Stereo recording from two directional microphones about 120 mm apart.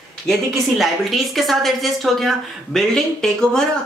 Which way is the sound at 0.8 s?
Centre (ahead or behind).